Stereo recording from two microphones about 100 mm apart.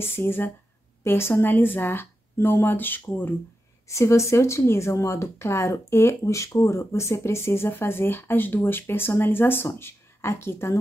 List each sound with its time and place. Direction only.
0.1 s speech: 20° left (ahead or behind)
3.8 s speech: 30° left (ahead or behind)